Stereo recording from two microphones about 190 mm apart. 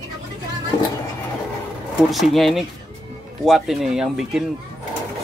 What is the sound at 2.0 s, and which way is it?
Speech, centre (ahead or behind).